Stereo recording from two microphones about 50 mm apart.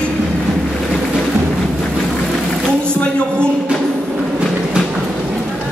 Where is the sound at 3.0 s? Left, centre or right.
Centre.